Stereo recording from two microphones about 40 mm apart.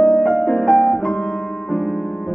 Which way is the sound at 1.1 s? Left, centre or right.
Centre.